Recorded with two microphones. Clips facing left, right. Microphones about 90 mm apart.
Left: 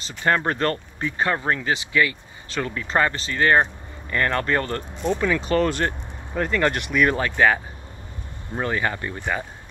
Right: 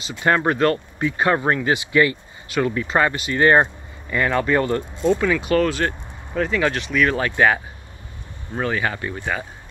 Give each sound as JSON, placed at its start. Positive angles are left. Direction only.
{"t": 0.0, "sound": "speech", "side_deg": -15}
{"t": 2.5, "sound": "speech", "side_deg": -10}
{"t": 4.1, "sound": "speech", "side_deg": -5}
{"t": 5.8, "sound": "speech", "side_deg": 10}
{"t": 7.2, "sound": "speech", "side_deg": -10}
{"t": 8.6, "sound": "speech", "side_deg": 0}